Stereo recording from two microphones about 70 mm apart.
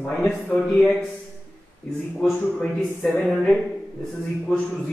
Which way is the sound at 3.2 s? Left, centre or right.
Centre.